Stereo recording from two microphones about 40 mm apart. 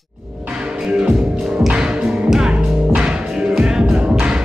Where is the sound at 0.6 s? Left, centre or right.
Right.